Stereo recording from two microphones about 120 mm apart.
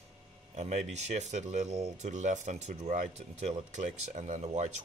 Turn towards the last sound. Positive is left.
turn(degrees=-75)  # may be behind; listen again after turning